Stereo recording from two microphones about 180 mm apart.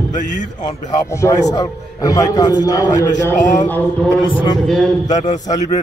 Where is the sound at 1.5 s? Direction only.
20° left (ahead or behind).